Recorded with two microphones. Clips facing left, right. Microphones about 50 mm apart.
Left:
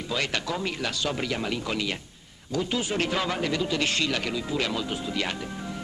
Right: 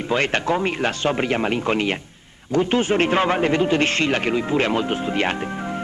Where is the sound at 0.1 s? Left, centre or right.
Right.